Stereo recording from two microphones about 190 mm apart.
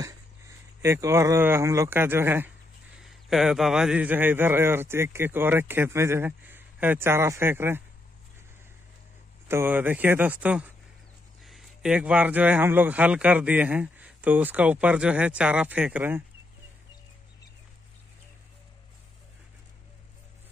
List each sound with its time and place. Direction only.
0.0 s speech: 15° right (ahead or behind)
3.0 s a man's voice: centre (ahead or behind)
9.5 s a man's voice: 10° right (ahead or behind)